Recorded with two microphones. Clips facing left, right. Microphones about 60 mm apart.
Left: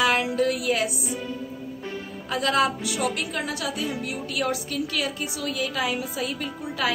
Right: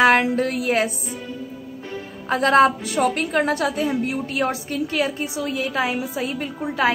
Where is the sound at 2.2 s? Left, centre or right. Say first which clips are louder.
Right 7 dB; right.